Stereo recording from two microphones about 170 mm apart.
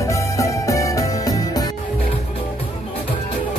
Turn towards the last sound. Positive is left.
turn(degrees=20)  # may be behind; listen again after turning